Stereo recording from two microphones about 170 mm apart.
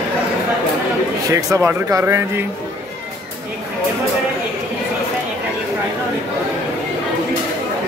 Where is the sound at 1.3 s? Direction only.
15° right (ahead or behind).